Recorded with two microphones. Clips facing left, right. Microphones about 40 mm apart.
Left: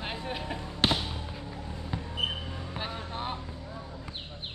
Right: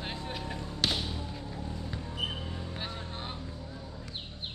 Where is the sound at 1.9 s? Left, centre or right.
Left.